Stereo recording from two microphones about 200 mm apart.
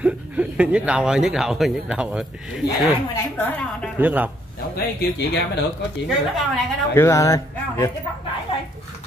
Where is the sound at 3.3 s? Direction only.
10° left (ahead or behind).